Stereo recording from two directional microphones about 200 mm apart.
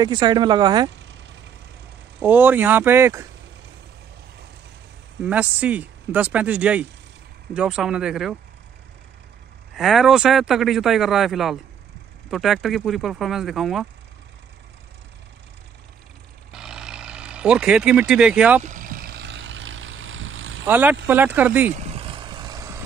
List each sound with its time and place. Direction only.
0.0 s speech: 20° right (ahead or behind)
2.2 s speech: 10° right (ahead or behind)
5.2 s speech: 5° right (ahead or behind)
9.8 s speech: centre (ahead or behind)
16.5 s vehicle: 5° right (ahead or behind)
18.6 s vehicle: 40° right (ahead or behind); by 20.6 s 75° right (ahead or behind)
20.6 s speech: 10° right (ahead or behind)
21.7 s vehicle: 30° right (ahead or behind)